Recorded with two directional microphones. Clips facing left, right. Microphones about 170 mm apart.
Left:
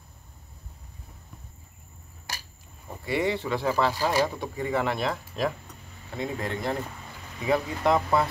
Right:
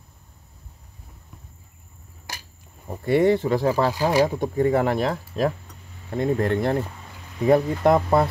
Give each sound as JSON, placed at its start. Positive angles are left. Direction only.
{"t": 3.1, "sound": "speech", "side_deg": -50}
{"t": 4.0, "sound": "speech", "side_deg": -15}
{"t": 4.4, "sound": "speech", "side_deg": -45}
{"t": 6.1, "sound": "speech", "side_deg": -50}